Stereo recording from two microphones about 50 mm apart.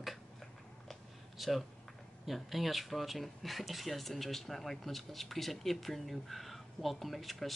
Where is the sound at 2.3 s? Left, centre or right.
Centre.